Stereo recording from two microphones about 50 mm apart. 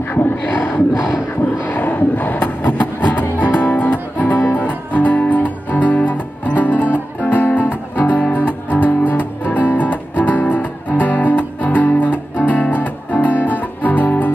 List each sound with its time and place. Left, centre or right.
0.1 s speech: left
1.8 s a sound: left
2.3 s music: left